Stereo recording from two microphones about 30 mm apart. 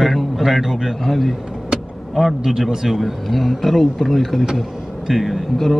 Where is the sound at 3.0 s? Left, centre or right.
Centre.